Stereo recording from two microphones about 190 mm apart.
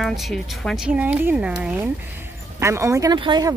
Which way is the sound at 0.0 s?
Centre (ahead or behind).